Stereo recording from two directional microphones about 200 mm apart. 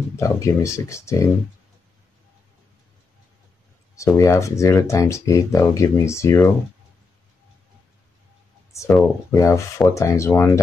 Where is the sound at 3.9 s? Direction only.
15° left (ahead or behind).